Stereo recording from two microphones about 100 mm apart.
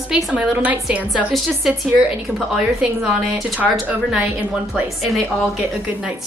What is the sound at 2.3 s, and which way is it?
A woman's voice, 5° right (ahead or behind).